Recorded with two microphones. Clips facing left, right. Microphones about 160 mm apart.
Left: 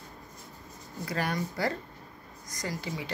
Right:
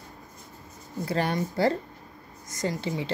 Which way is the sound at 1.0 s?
25° right (ahead or behind).